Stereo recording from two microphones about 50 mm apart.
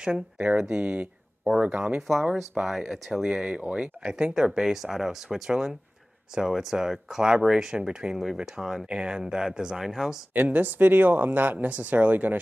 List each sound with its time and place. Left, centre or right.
0.0 s speech: centre
10.3 s speech: right